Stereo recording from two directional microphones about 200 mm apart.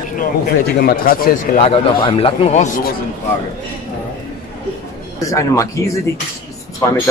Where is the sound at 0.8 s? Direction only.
45° left (ahead or behind).